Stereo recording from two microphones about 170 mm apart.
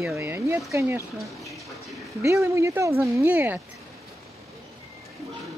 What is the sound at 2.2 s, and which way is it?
Speech, 15° right (ahead or behind).